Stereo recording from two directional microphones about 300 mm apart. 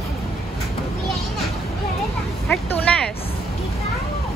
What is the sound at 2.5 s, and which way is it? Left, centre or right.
Speech, centre.